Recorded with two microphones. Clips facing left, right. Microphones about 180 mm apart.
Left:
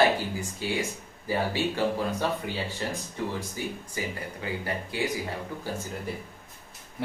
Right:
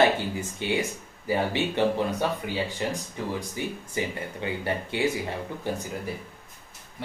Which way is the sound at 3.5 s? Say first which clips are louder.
Right 3 dB; 25° right (ahead or behind).